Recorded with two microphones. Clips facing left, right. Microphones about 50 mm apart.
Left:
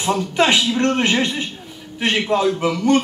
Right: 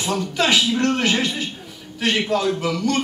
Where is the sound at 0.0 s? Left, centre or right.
Centre.